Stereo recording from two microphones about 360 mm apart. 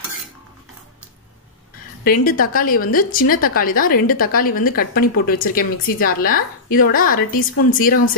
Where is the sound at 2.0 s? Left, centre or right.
Left.